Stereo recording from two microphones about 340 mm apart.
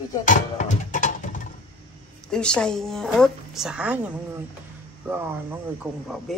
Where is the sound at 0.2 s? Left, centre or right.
Left.